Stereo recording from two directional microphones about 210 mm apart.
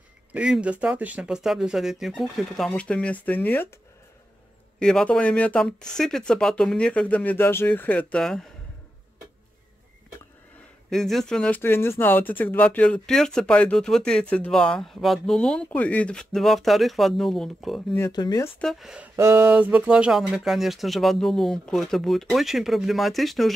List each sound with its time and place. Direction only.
0.3 s speech: 5° right (ahead or behind)
4.7 s speech: 5° left (ahead or behind)
10.9 s speech: centre (ahead or behind)
17.9 s speech: 15° left (ahead or behind)
18.6 s speech: centre (ahead or behind)
19.1 s speech: 15° right (ahead or behind)